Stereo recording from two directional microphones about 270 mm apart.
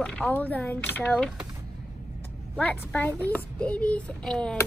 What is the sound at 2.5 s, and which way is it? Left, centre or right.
A child's voice, centre.